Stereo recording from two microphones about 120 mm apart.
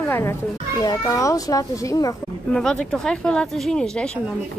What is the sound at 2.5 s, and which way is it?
Speech, 5° left (ahead or behind).